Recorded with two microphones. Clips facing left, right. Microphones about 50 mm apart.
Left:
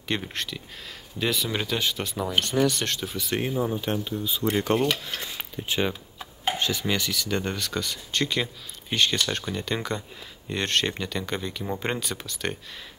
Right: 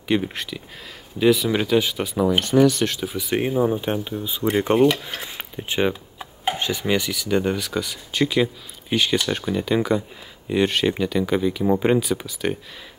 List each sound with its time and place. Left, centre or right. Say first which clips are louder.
0.1 s speech: right 7 dB; centre